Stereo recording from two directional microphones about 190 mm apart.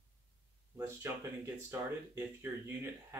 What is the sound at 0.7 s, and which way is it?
Speech, 15° right (ahead or behind).